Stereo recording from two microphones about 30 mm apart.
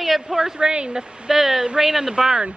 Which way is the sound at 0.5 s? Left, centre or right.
Right.